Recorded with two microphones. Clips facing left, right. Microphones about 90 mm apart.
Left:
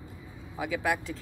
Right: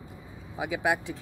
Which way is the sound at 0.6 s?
20° right (ahead or behind).